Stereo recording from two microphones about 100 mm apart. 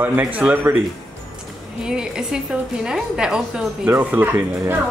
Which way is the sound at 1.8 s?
5° right (ahead or behind).